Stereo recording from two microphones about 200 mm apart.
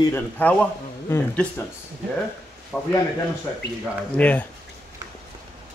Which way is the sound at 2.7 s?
5° left (ahead or behind).